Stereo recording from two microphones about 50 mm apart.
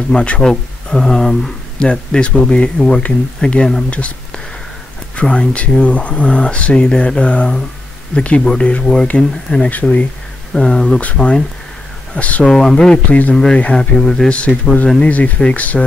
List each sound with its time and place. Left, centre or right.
0.1 s speech: left
0.4 s speech: centre
5.1 s speech: centre
10.5 s speech: centre
12.2 s speech: left
12.4 s speech: centre
14.3 s speech: left